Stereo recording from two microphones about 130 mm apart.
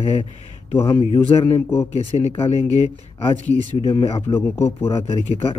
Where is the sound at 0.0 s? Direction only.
50° left (ahead or behind).